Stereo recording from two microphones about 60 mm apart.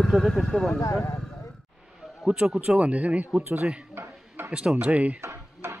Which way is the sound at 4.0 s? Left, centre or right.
Right.